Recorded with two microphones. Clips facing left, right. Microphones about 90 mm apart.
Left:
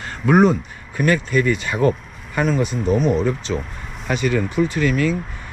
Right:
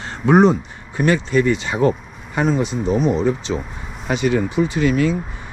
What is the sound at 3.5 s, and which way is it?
Speech, 40° right (ahead or behind).